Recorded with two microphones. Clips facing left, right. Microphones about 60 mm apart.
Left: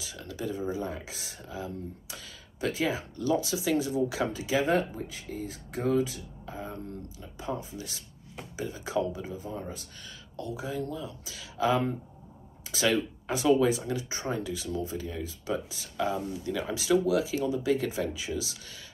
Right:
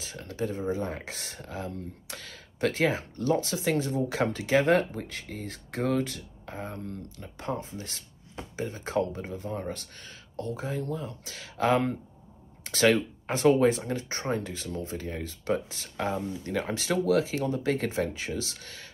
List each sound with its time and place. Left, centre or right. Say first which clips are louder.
0.0 s speech: right 3 dB; right